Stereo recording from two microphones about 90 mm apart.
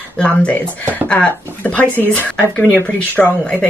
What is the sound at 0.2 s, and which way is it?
Speech, 15° left (ahead or behind).